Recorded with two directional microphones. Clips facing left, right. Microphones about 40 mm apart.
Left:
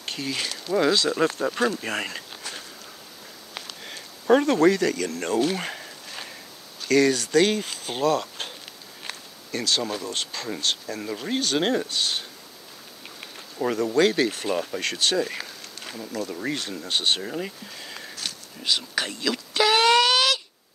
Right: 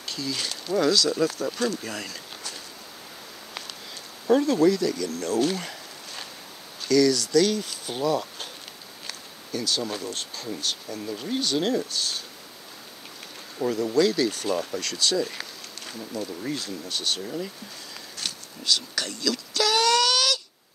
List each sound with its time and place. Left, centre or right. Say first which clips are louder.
0.0 s a sound: left 1 dB; left
0.4 s speech: left 1 dB; left
3.8 s speech: left 4 dB; left
6.9 s speech: even; left
9.5 s speech: left 2 dB; left
13.7 s speech: left 1 dB; left
14.3 s speech: even; left
14.8 s speech: left 2 dB; left
15.3 s a sound: left 2 dB; centre
16.1 s speech: left 2 dB; left
18.6 s a sound: left 1 dB; left